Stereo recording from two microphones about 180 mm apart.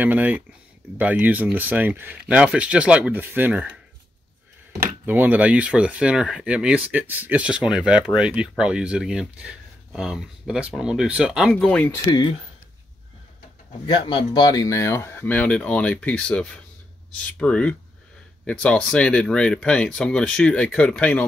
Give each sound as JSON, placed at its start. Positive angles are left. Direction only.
{"t": 0.0, "sound": "speech", "side_deg": -10}
{"t": 5.0, "sound": "speech", "side_deg": -10}
{"t": 12.1, "sound": "speech", "side_deg": 25}
{"t": 13.8, "sound": "speech", "side_deg": 25}